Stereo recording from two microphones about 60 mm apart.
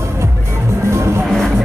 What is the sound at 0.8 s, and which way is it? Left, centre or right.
Music, right.